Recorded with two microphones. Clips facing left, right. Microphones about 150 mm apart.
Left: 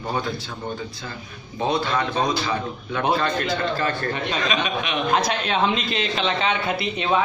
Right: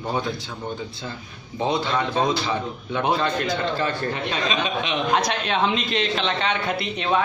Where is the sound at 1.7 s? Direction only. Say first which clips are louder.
Even; 20° right (ahead or behind).